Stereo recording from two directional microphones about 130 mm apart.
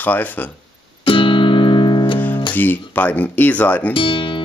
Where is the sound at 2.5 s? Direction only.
15° left (ahead or behind).